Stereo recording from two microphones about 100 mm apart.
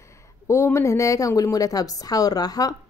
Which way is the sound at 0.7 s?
30° left (ahead or behind).